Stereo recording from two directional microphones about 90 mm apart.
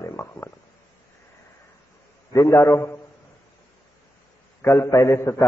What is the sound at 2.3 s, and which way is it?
Speech, 40° left (ahead or behind).